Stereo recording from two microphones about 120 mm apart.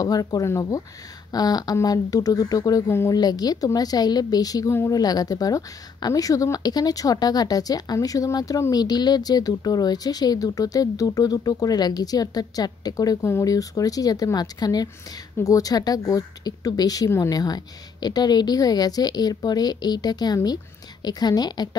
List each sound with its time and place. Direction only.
0.0 s a woman's voice: 30° left (ahead or behind)